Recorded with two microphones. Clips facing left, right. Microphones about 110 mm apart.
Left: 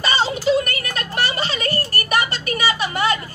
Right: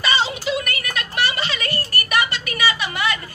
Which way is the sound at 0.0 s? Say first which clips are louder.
Left 2 dB; 35° left (ahead or behind).